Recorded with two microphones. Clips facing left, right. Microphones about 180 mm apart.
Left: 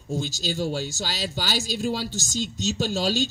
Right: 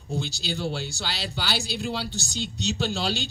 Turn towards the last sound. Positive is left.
turn(degrees=45)  # may be behind; listen again after turning